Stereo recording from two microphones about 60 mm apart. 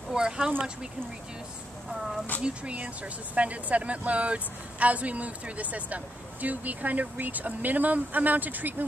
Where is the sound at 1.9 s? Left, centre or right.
Centre.